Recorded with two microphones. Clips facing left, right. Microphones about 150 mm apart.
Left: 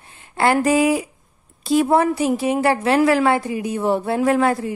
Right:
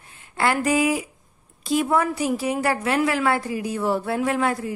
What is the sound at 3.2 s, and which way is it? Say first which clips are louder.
A woman's voice: left 4 dB; 20° left (ahead or behind).